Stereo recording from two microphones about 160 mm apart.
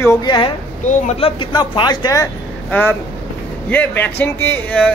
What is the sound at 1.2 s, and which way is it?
Speech, 35° left (ahead or behind).